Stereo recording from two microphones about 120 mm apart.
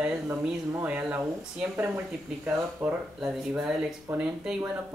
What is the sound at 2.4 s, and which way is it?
Speech, 10° right (ahead or behind).